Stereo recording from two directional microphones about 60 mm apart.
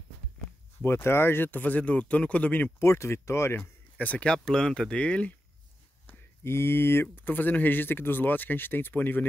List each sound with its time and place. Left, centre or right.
0.8 s speech: left
2.8 s speech: left
3.5 s speech: left
6.4 s speech: left
7.2 s speech: left